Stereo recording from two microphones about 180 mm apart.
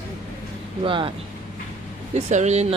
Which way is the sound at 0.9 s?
30° right (ahead or behind).